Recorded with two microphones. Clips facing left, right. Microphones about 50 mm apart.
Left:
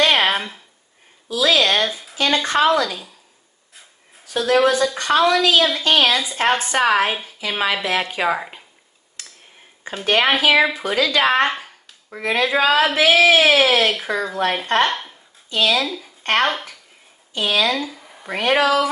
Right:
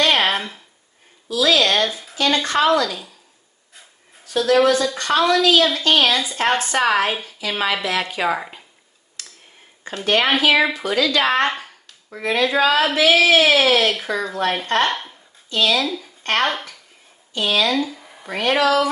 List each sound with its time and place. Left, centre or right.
0.0 s a sound: centre
1.3 s speech: left
1.7 s a woman's voice: centre
4.3 s a woman's voice: centre
9.2 s a sound: left
9.8 s a woman's voice: centre
10.9 s speech: left
11.4 s a woman's voice: centre
15.5 s a woman's voice: centre
16.2 s speech: centre
18.3 s a woman's voice: centre